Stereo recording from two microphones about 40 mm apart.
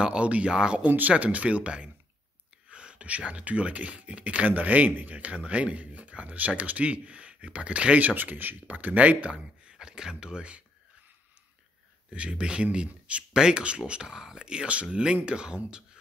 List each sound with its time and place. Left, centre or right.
0.0 s speech: right
0.8 s speech: right
8.0 s speech: right
12.1 s speech: right
13.3 s speech: right